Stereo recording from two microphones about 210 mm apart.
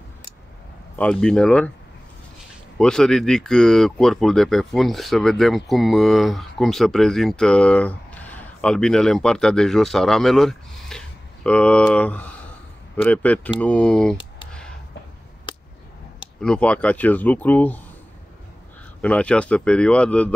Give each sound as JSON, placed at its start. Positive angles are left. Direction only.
{"t": 0.9, "sound": "speech", "side_deg": 5}
{"t": 2.8, "sound": "speech", "side_deg": 5}
{"t": 15.5, "sound": "a sound", "side_deg": 25}
{"t": 16.3, "sound": "speech", "side_deg": 5}
{"t": 18.9, "sound": "speech", "side_deg": 5}